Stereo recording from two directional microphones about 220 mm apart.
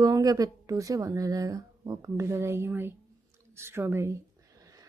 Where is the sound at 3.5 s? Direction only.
10° right (ahead or behind).